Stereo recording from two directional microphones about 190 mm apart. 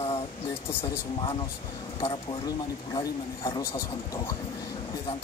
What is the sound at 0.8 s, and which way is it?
Speech, 25° left (ahead or behind).